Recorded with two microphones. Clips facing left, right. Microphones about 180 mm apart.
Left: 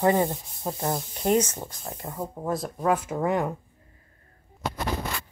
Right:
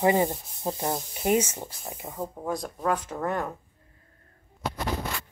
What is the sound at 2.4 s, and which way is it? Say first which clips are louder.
Speech: left 3 dB; 5° left (ahead or behind).